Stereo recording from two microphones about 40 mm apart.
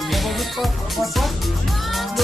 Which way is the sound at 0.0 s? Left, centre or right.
Centre.